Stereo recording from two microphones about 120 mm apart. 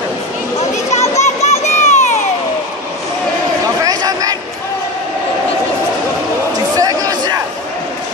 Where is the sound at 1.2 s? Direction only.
70° left (ahead or behind).